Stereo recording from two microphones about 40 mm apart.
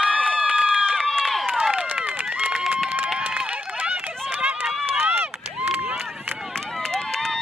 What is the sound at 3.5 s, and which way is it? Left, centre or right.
Run, right.